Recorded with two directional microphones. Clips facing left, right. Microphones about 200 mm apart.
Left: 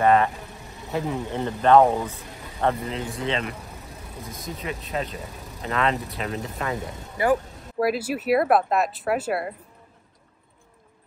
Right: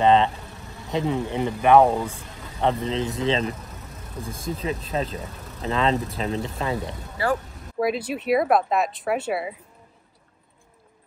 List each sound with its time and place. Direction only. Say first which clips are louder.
0.0 s speech: right 1 dB; 20° right (ahead or behind)
7.2 s speech: left 3 dB; 20° left (ahead or behind)
7.8 s speech: left 1 dB; 5° left (ahead or behind)